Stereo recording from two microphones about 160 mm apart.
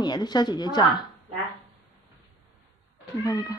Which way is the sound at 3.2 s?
20° left (ahead or behind).